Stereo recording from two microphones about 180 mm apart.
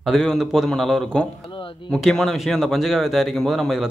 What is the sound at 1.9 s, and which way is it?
A man's voice, centre (ahead or behind).